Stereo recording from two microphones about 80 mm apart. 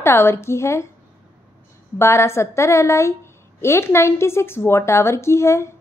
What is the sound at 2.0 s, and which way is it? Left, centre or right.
A woman's voice, left.